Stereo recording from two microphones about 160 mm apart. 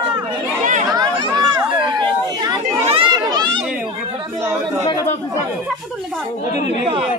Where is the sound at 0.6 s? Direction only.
50° right (ahead or behind).